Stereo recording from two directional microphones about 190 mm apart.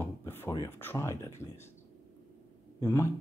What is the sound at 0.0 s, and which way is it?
Speech, 10° left (ahead or behind).